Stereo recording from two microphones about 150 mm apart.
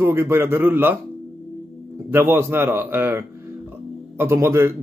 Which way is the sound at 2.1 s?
15° right (ahead or behind).